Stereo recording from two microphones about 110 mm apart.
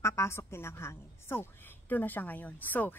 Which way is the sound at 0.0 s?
25° left (ahead or behind).